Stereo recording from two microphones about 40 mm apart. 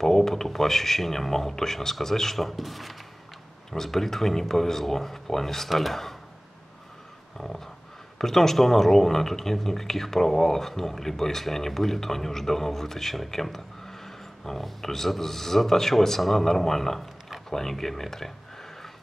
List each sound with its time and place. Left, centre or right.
0.0 s speech: centre
7.3 s speech: centre